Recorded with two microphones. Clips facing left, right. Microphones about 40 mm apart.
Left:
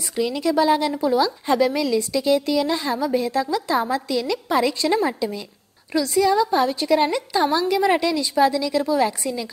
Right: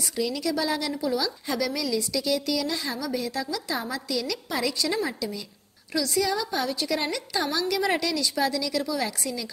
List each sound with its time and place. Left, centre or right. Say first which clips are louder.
0.1 s a woman's voice: left 7 dB; left